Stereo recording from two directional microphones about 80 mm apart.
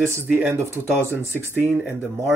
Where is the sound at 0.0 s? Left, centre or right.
Right.